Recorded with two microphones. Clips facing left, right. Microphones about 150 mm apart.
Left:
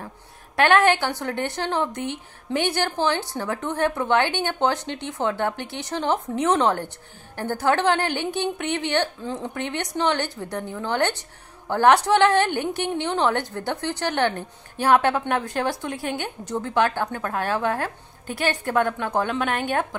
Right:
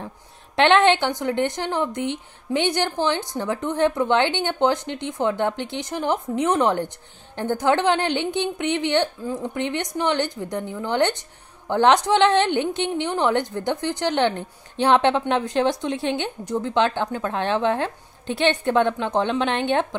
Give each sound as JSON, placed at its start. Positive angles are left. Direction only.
{"t": 0.6, "sound": "a woman's voice", "side_deg": -20}